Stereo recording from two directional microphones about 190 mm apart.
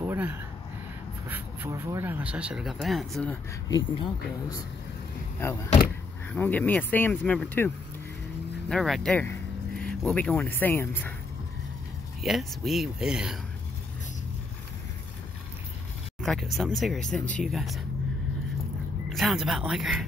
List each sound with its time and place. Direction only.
0.0 s a sound: 10° right (ahead or behind)
1.3 s speech: 15° right (ahead or behind)
3.6 s speech: 20° left (ahead or behind)
12.2 s speech: centre (ahead or behind)
16.2 s speech: centre (ahead or behind)
19.0 s speech: centre (ahead or behind)